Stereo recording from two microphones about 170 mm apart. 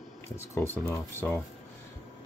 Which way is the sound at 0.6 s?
15° left (ahead or behind).